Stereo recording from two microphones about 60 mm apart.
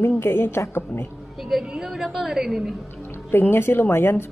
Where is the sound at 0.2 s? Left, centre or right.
Left.